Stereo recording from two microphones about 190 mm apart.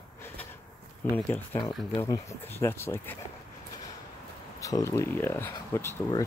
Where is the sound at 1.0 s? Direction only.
10° left (ahead or behind).